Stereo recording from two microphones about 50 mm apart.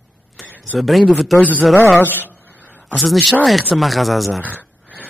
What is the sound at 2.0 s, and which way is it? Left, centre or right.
Speech, right.